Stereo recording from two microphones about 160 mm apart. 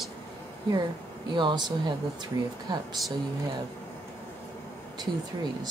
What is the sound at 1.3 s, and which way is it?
Speech, 30° right (ahead or behind).